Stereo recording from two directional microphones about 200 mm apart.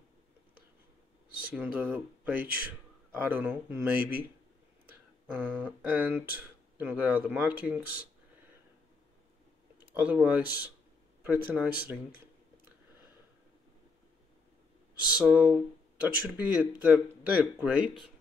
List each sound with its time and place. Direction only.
1.5 s speech: 10° right (ahead or behind)
5.3 s speech: 10° right (ahead or behind)
9.8 s speech: 5° right (ahead or behind)
15.1 s speech: 5° right (ahead or behind)